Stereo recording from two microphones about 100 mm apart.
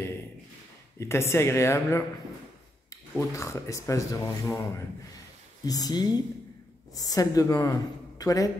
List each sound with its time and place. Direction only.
0.9 s speech: 25° left (ahead or behind)